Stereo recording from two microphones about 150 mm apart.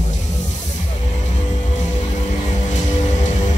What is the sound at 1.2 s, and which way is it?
Music, 50° left (ahead or behind).